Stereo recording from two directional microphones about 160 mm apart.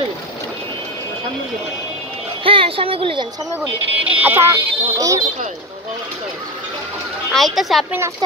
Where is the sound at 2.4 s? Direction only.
35° right (ahead or behind).